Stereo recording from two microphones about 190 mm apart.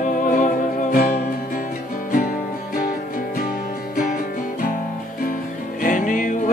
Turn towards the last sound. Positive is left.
turn(degrees=45)  # may be behind; listen again after turning